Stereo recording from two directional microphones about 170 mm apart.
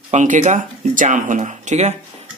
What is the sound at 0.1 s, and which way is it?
Speech, 45° right (ahead or behind).